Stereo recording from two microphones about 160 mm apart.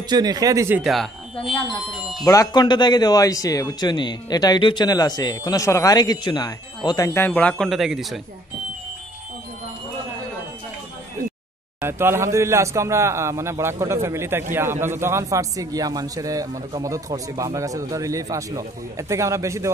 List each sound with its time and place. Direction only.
0.1 s a man's voice: 25° right (ahead or behind)
0.8 s speech: centre (ahead or behind)
2.2 s speech: 20° left (ahead or behind)
7.2 s speech: 10° left (ahead or behind)
11.8 s a man's voice: 15° right (ahead or behind)